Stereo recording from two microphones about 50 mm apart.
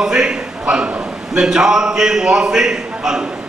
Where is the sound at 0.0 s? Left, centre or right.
Centre.